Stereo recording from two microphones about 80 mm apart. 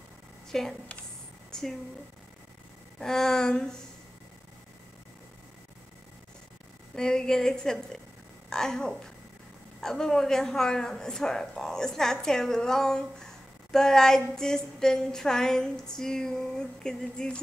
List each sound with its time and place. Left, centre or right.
0.5 s speech: centre
1.5 s a sound: centre
3.0 s a woman's voice: centre
7.0 s a woman's voice: centre